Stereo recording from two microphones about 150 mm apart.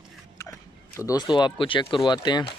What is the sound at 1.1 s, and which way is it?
Speech, 30° left (ahead or behind).